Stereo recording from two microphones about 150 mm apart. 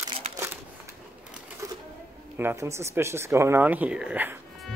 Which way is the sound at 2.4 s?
15° right (ahead or behind).